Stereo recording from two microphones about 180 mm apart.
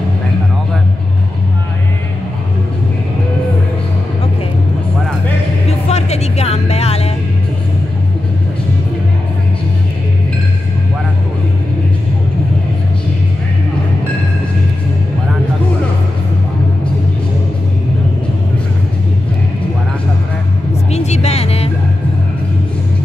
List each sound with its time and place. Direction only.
5.7 s music: 35° left (ahead or behind)
20.9 s music: 40° left (ahead or behind)